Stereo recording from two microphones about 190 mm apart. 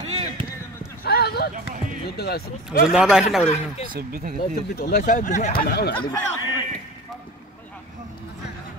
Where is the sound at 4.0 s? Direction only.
50° right (ahead or behind).